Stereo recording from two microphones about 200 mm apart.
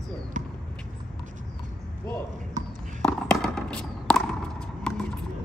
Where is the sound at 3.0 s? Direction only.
5° left (ahead or behind).